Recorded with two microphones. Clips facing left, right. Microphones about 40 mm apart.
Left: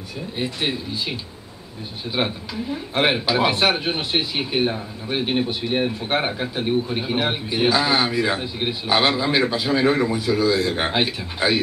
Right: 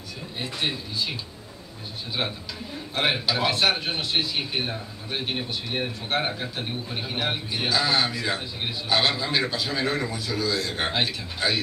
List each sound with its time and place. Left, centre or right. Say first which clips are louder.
0.4 s a man's voice: left 4 dB; centre
2.2 s a man's voice: left 7 dB; centre